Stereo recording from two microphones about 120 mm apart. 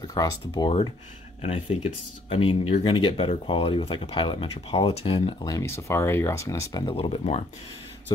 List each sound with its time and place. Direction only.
0.0 s speech: 30° left (ahead or behind)
1.4 s speech: 55° left (ahead or behind)
5.4 s speech: 25° left (ahead or behind)
6.8 s speech: 50° left (ahead or behind)